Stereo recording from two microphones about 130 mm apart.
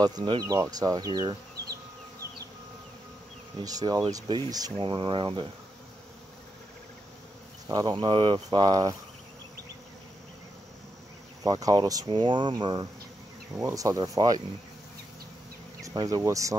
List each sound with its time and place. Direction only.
0.0 s speech: 30° right (ahead or behind)
3.6 s speech: 30° right (ahead or behind)
7.6 s speech: 35° right (ahead or behind)
11.4 s speech: 30° right (ahead or behind)
15.8 s speech: 25° right (ahead or behind)